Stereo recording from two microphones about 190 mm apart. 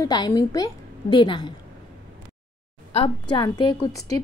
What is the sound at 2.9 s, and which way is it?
A woman's voice, 25° left (ahead or behind).